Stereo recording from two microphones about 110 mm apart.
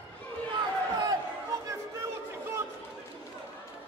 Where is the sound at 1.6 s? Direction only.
25° right (ahead or behind).